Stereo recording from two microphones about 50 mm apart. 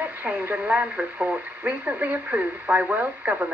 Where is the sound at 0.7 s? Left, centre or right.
Right.